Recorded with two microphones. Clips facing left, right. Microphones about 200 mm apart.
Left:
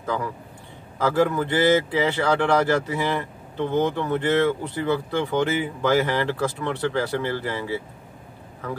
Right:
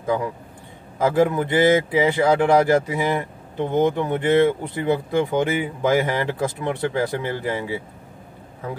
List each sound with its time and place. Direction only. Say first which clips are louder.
1.0 s speech: right 2 dB; 15° right (ahead or behind)